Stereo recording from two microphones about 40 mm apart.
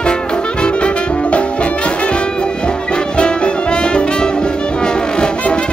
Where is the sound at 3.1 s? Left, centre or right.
Left.